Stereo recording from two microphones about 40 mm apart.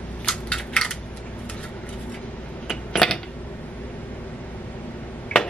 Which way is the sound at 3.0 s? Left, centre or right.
Centre.